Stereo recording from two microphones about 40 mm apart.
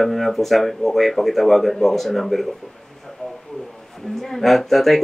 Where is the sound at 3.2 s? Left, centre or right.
Left.